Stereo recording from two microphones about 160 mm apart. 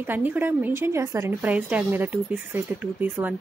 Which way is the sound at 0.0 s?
10° right (ahead or behind).